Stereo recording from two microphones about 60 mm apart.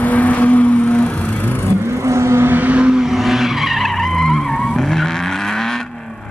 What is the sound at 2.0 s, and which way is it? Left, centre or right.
Vehicle, right.